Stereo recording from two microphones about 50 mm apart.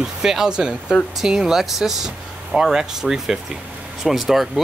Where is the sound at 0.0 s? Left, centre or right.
Centre.